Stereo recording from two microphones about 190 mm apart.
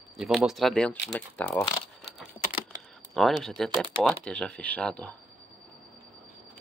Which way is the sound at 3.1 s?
Centre (ahead or behind).